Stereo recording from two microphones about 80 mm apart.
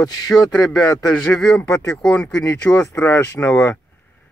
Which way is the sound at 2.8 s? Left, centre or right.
Left.